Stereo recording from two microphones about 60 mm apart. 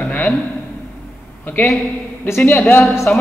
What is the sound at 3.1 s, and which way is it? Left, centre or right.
Speech, left.